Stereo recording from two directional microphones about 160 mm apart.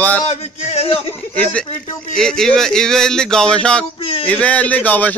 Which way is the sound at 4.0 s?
35° left (ahead or behind).